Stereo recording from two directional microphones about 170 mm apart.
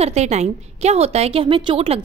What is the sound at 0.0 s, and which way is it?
A woman's voice, 40° right (ahead or behind).